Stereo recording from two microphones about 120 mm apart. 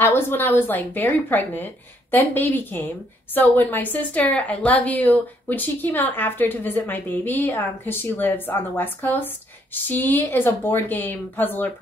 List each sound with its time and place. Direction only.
0.0 s speech: 20° left (ahead or behind)